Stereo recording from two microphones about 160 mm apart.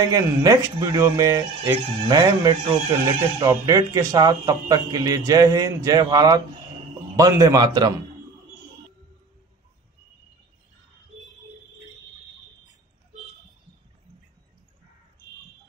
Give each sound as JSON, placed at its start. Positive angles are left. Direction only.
{"t": 0.1, "sound": "a man's voice", "side_deg": -20}